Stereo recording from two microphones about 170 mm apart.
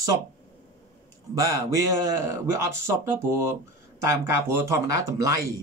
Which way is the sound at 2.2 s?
15° right (ahead or behind).